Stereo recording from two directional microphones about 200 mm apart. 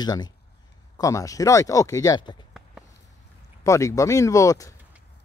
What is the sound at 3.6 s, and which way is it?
Speech, 15° left (ahead or behind).